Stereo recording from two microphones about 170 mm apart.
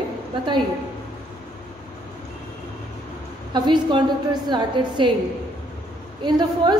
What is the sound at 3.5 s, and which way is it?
A woman's voice, 25° right (ahead or behind).